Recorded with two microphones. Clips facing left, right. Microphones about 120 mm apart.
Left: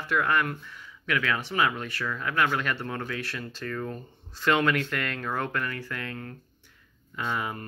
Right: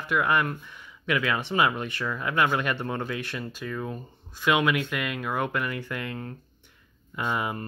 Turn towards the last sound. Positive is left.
turn(degrees=-20)  # may be behind; listen again after turning